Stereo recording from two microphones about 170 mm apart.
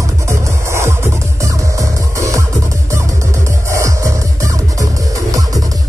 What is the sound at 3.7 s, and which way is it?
Music, 15° right (ahead or behind).